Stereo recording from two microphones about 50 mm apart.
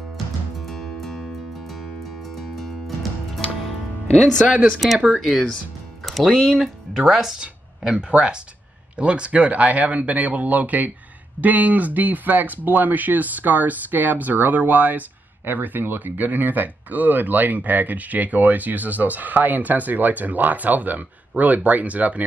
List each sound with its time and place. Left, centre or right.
0.6 s music: centre
2.3 s music: centre
4.1 s speech: centre
4.7 s speech: centre
6.0 s music: centre
7.1 s speech: centre
7.3 s speech: centre